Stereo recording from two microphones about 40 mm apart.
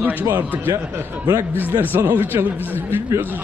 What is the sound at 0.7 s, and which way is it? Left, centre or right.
Speech, right.